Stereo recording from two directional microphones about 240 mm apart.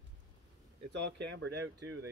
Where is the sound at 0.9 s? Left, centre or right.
Right.